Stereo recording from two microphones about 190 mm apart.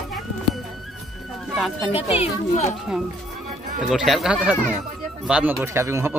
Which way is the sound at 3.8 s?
Centre (ahead or behind).